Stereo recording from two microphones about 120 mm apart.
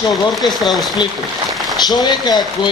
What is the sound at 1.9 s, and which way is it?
Speech, 35° left (ahead or behind).